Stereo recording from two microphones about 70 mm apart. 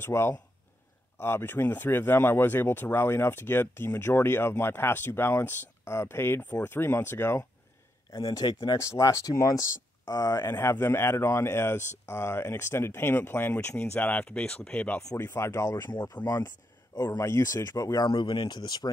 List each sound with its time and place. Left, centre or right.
0.0 s speech: left
8.1 s speech: left
8.7 s speech: left; by 15.0 s centre
15.1 s speech: left
15.9 s speech: left
16.3 s speech: left
16.9 s speech: left
17.2 s speech: left
18.0 s speech: left